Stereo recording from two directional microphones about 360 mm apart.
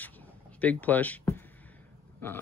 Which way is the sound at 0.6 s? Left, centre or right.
Centre.